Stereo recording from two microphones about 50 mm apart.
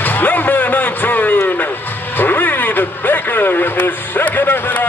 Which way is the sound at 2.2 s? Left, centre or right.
Left.